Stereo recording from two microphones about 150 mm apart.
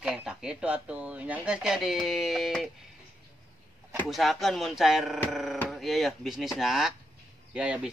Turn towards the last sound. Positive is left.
turn(degrees=-5)  # may be behind; listen again after turning